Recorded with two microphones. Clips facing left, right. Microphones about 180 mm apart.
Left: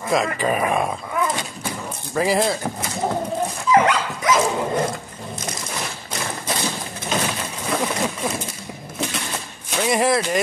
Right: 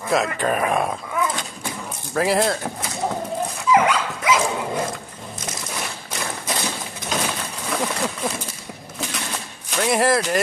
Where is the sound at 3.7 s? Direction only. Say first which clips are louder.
Left 1 dB; 10° right (ahead or behind).